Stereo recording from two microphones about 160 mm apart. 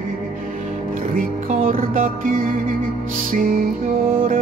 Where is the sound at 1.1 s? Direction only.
60° right (ahead or behind).